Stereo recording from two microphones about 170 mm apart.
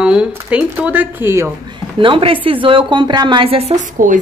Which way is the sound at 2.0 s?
30° right (ahead or behind).